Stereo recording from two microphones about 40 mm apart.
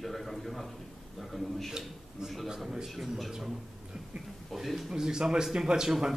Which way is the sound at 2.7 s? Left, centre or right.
Centre.